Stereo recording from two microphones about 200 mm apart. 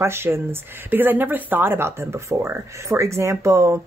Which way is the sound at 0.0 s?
10° right (ahead or behind).